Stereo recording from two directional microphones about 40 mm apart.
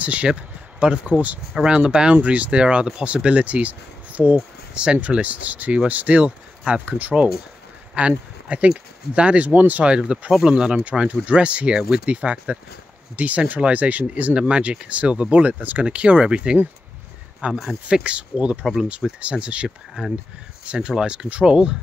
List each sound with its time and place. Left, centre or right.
0.0 s speech: right
1.6 s speech: right
2.2 s speech: right
4.7 s speech: right
5.0 s speech: right
6.9 s speech: right
8.0 s speech: right
9.8 s speech: right
15.4 s speech: right
15.8 s speech: right